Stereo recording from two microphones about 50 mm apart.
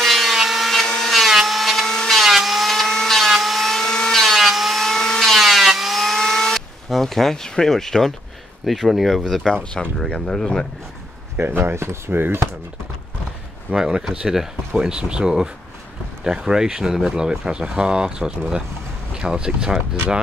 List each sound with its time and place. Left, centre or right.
0.0 s wood: centre
0.8 s wood: centre
4.2 s wood: centre
4.8 s a sound: centre
6.9 s speech: centre
11.3 s speech: right
12.1 s speech: right
13.7 s speech: centre